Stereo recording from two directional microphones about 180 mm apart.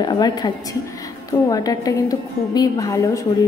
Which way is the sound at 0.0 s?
20° left (ahead or behind).